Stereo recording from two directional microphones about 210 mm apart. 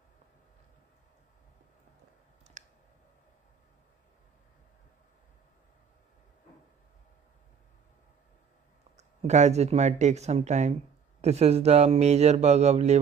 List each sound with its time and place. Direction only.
2.6 s clicking: 35° right (ahead or behind)
8.9 s speech: 35° right (ahead or behind)